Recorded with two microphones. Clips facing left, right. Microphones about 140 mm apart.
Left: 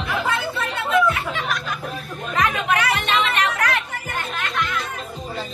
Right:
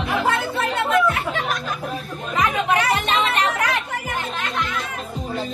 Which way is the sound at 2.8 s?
35° right (ahead or behind).